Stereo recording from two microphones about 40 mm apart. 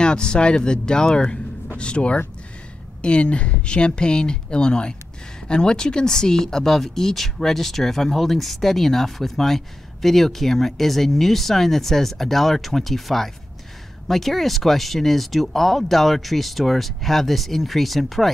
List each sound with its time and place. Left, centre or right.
0.0 s speech: left; by 18.3 s centre